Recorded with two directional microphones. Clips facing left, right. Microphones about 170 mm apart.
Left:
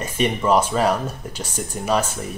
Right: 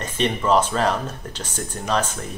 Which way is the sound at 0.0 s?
10° left (ahead or behind).